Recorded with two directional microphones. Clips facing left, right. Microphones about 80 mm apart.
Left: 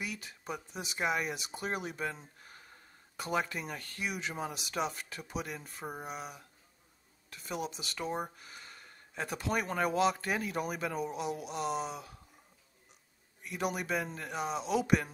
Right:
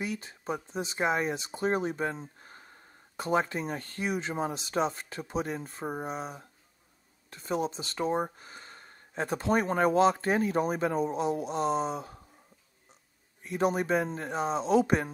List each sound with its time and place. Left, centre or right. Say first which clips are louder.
0.0 s speech: right 6 dB; right
13.4 s speech: right 7 dB; right